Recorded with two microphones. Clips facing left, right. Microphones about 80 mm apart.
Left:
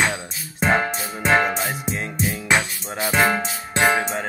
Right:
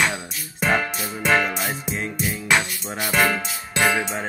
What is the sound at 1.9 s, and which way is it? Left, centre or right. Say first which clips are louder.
Music: left 1 dB; left.